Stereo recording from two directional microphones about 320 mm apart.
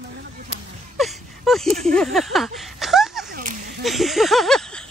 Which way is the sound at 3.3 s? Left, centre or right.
Right.